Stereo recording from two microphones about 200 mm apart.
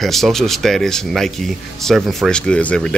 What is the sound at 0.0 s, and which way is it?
A man's voice, centre (ahead or behind).